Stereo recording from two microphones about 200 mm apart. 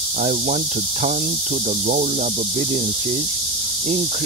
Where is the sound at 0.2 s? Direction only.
35° right (ahead or behind).